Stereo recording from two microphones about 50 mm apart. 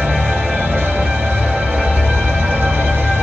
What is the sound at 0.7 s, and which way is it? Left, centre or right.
Music, right.